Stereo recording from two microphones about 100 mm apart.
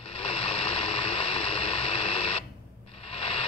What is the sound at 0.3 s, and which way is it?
Vehicle, 60° left (ahead or behind).